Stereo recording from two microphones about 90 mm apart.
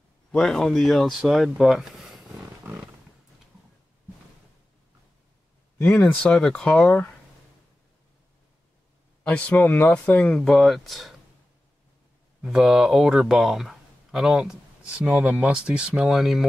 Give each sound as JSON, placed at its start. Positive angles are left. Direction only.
{"t": 0.3, "sound": "speech", "side_deg": 5}
{"t": 2.6, "sound": "roaring cats", "side_deg": -25}
{"t": 5.8, "sound": "speech", "side_deg": 15}
{"t": 9.2, "sound": "speech", "side_deg": 15}
{"t": 12.4, "sound": "speech", "side_deg": -5}